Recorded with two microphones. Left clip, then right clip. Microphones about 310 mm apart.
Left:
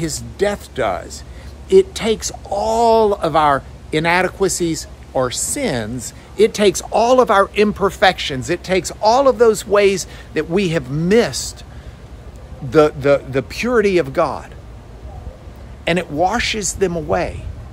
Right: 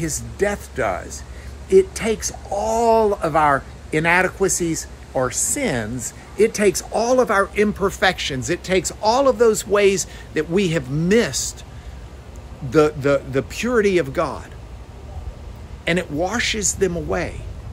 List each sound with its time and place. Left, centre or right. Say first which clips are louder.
0.4 s a man's voice: left 3 dB; centre
2.8 s a man's voice: left 3 dB; centre
12.6 s a man's voice: left 4 dB; centre
15.8 s a man's voice: left 4 dB; centre